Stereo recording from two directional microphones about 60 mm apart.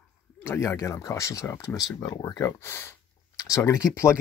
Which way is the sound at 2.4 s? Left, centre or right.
Left.